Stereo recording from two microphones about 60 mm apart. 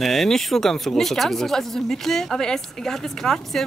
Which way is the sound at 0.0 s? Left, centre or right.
Centre.